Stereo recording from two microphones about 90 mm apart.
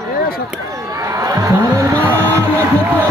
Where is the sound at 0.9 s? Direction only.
40° right (ahead or behind).